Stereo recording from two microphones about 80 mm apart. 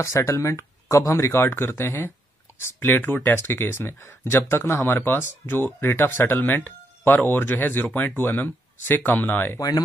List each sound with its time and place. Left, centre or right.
0.0 s speech: left
1.4 s speech: left
9.6 s speech: left